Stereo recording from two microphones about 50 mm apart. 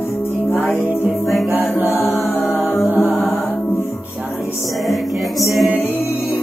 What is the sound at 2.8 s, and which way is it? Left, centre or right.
Music, right.